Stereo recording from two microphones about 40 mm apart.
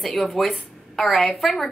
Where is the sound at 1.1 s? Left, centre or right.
Centre.